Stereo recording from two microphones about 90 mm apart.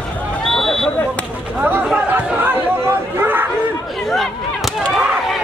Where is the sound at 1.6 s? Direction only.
20° right (ahead or behind).